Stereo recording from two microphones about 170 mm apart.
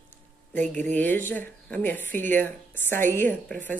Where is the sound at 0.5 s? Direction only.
10° left (ahead or behind).